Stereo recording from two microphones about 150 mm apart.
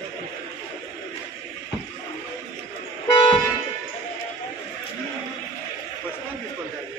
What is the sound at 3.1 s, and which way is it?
Toot, 25° left (ahead or behind).